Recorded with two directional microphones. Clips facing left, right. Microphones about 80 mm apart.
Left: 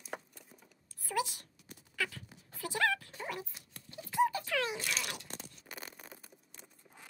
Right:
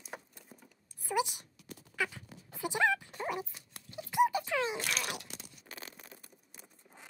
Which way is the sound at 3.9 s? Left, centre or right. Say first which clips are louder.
Right 2 dB; centre.